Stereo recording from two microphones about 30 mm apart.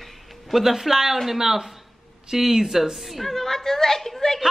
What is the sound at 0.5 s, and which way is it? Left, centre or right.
Speech, centre.